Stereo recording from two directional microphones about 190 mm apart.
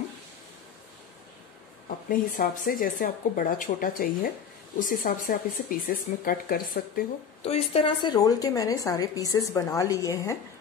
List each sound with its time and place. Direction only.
2.0 s speech: 45° left (ahead or behind)
7.4 s a woman's voice: 30° left (ahead or behind); by 10.3 s 15° left (ahead or behind)